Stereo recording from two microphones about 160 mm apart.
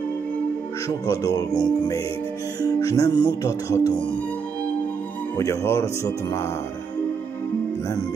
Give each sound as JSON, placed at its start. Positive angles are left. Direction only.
{"t": 0.8, "sound": "music", "side_deg": 20}
{"t": 5.3, "sound": "music", "side_deg": 20}